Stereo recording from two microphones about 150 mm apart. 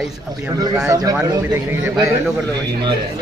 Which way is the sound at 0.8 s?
25° right (ahead or behind).